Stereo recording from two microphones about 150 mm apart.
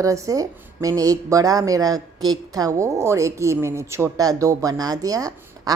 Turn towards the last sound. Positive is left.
turn(degrees=-25)  # may be behind; listen again after turning